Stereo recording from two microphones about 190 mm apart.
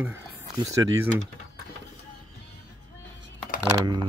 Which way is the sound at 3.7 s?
25° right (ahead or behind).